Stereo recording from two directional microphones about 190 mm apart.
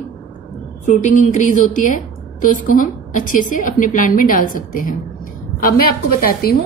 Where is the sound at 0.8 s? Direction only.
40° left (ahead or behind).